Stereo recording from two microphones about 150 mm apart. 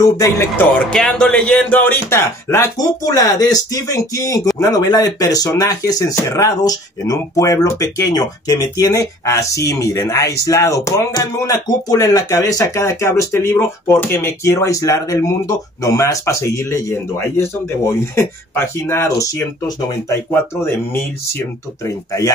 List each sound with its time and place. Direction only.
0.0 s speech: 20° left (ahead or behind)
0.9 s speech: 5° left (ahead or behind); by 19.4 s 20° left (ahead or behind)
21.8 s speech: 20° left (ahead or behind)